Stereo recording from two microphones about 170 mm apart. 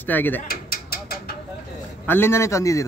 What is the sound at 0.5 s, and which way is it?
Mechanisms, 60° left (ahead or behind).